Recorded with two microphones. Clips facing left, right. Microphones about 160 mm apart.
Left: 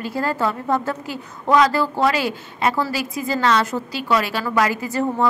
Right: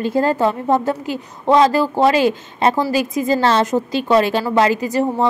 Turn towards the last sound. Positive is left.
turn(degrees=-15)  # may be behind; listen again after turning